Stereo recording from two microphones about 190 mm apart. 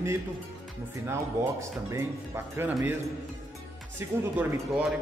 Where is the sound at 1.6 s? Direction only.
15° right (ahead or behind).